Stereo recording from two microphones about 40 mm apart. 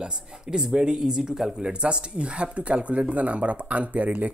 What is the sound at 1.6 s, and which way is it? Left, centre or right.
Speech, right.